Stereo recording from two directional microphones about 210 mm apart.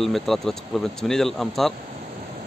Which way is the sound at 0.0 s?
Centre (ahead or behind).